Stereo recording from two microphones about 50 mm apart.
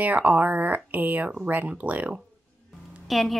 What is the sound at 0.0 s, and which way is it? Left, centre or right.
Speech, right.